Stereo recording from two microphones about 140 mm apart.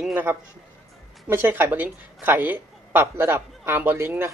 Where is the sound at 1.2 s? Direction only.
15° right (ahead or behind).